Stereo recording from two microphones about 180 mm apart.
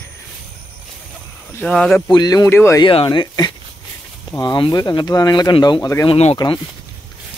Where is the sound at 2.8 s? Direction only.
30° left (ahead or behind).